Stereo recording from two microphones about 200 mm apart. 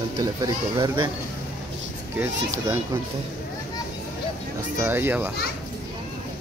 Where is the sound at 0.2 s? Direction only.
20° right (ahead or behind).